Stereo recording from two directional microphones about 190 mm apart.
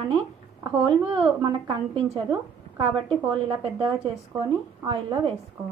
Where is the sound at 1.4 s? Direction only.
20° right (ahead or behind).